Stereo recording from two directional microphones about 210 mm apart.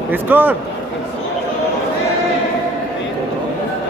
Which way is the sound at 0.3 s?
10° right (ahead or behind).